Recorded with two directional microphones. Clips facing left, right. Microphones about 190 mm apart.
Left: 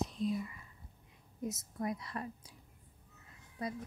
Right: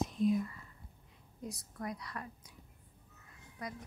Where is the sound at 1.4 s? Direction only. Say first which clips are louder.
Left 4 dB; 25° left (ahead or behind).